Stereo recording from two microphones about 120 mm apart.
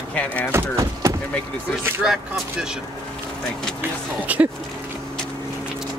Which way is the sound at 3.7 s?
15° right (ahead or behind).